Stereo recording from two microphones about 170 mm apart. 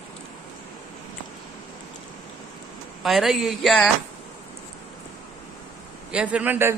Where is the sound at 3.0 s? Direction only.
Centre (ahead or behind).